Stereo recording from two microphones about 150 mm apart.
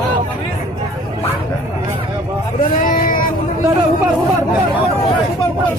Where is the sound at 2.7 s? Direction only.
70° left (ahead or behind).